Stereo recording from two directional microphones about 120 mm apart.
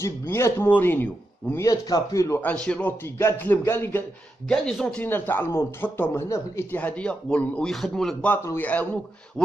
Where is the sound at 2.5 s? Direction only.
10° left (ahead or behind).